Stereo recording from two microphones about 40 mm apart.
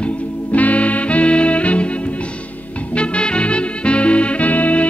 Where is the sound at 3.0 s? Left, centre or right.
Left.